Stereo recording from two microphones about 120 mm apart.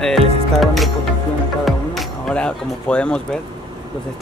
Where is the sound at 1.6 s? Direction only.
Centre (ahead or behind).